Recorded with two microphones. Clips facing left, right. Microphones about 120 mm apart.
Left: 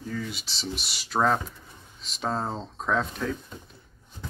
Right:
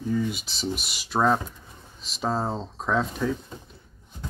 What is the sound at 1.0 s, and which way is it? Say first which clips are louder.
Speech: right 2 dB; 5° right (ahead or behind).